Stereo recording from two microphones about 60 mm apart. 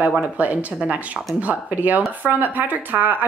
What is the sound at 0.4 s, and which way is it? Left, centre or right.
Speech, right.